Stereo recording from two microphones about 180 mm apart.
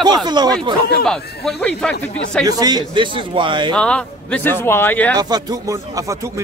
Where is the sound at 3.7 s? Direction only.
5° left (ahead or behind).